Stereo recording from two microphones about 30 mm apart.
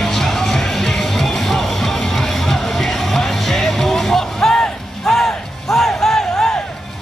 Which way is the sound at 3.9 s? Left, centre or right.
Centre.